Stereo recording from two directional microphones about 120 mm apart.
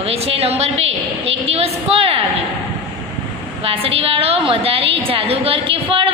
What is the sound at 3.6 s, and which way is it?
A woman's voice, 55° right (ahead or behind).